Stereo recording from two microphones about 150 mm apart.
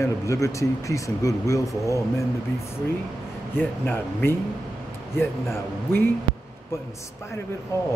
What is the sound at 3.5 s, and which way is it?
Speech, 10° left (ahead or behind).